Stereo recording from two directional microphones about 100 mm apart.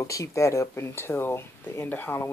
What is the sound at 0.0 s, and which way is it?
Speech, 35° left (ahead or behind).